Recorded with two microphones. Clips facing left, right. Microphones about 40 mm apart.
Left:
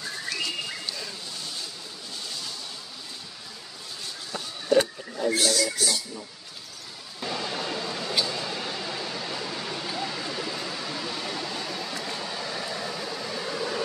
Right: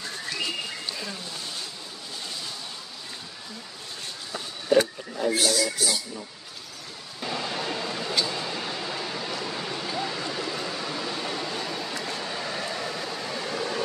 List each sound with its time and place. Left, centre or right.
4.7 s speech: centre
5.1 s speech: centre
7.2 s vehicle: centre
8.3 s a sound: centre
12.0 s vehicle: centre